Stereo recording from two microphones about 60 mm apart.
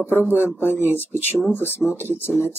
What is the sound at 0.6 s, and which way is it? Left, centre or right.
Speech, left.